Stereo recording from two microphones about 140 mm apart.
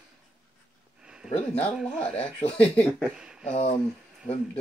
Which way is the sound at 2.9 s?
5° right (ahead or behind).